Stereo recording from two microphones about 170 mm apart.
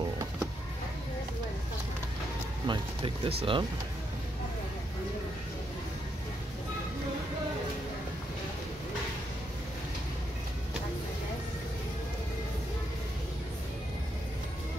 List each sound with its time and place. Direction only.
2.6 s speech: 30° right (ahead or behind)